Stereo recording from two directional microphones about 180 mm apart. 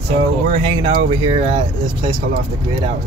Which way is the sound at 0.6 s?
30° right (ahead or behind).